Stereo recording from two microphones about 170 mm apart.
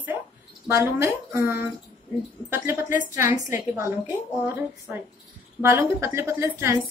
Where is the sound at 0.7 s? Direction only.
15° right (ahead or behind).